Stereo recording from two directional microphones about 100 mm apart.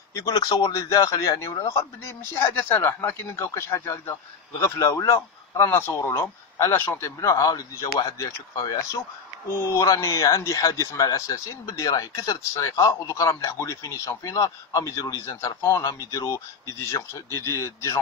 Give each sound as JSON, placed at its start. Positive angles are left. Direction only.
{"t": 0.1, "sound": "a man's voice", "side_deg": 35}
{"t": 7.2, "sound": "speech", "side_deg": 35}